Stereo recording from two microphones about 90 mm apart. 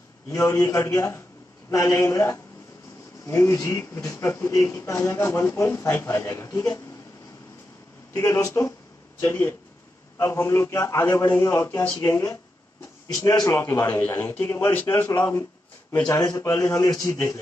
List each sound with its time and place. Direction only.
0.3 s a man's voice: 30° left (ahead or behind)
8.1 s a man's voice: 35° left (ahead or behind)
16.2 s a man's voice: 40° left (ahead or behind)
16.4 s a man's voice: 30° left (ahead or behind)